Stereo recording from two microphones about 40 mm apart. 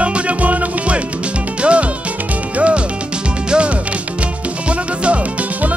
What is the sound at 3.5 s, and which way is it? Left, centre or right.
Music, right.